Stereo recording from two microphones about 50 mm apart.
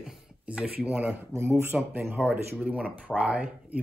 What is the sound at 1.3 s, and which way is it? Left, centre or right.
Speech, right.